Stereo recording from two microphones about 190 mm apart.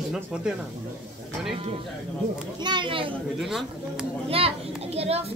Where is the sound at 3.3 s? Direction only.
Centre (ahead or behind).